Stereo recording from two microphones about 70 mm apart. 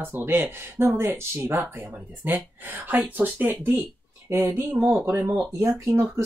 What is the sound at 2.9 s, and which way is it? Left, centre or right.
Speech, right.